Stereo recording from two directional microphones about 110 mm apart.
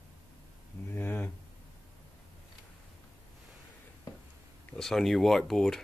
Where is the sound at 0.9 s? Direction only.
15° left (ahead or behind).